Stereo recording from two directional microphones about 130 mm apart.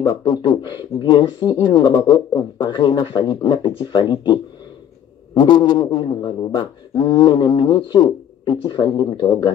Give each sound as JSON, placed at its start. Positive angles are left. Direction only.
{"t": 0.0, "sound": "speech", "side_deg": 30}